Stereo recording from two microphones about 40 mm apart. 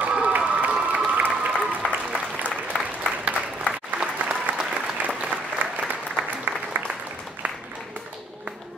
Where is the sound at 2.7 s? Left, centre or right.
Left.